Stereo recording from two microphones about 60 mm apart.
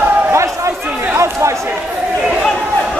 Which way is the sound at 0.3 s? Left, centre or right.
Right.